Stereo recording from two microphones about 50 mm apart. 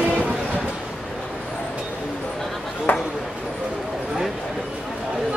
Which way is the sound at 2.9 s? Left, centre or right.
Left.